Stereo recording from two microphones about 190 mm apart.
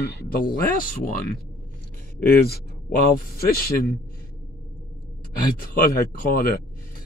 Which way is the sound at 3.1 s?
50° left (ahead or behind).